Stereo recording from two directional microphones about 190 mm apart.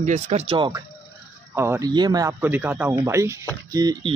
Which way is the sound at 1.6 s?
15° right (ahead or behind).